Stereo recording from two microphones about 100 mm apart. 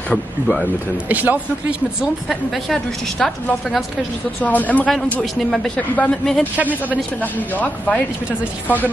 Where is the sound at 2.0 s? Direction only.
Centre (ahead or behind).